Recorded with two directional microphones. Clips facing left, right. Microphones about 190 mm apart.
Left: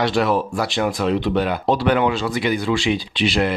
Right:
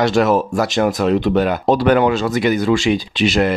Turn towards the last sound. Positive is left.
turn(degrees=-45)  # may be behind; listen again after turning